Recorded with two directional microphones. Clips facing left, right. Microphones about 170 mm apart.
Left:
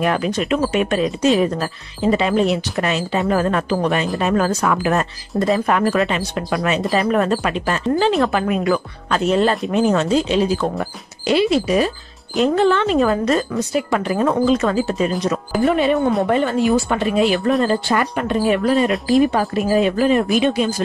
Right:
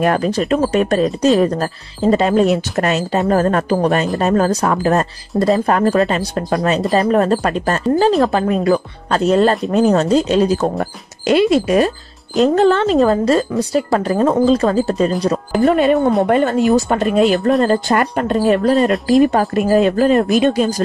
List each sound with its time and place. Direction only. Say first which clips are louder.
0.0 s speech: right 3 dB; 40° right (ahead or behind)